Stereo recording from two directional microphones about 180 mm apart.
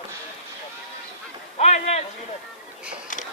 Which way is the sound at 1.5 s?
40° left (ahead or behind).